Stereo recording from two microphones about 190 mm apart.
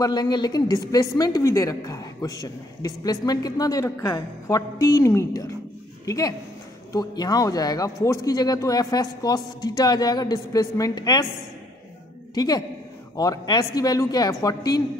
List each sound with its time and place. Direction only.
0.0 s a woman's voice: 20° left (ahead or behind)
12.4 s a woman's voice: 20° left (ahead or behind)